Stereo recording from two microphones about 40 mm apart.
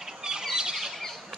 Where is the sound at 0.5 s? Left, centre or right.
Centre.